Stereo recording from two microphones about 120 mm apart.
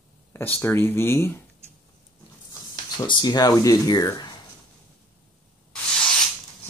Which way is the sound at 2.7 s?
35° left (ahead or behind).